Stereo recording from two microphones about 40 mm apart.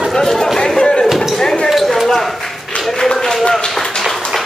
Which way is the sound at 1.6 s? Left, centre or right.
Centre.